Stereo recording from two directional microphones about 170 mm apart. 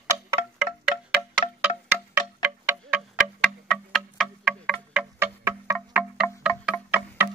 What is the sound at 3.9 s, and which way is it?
Music, centre (ahead or behind).